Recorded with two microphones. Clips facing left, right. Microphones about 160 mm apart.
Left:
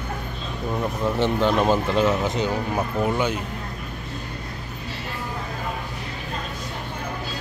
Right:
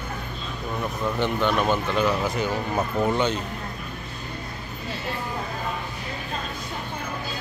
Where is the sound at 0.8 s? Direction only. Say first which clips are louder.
Left 3 dB; 25° left (ahead or behind); by 3.4 s 10° left (ahead or behind).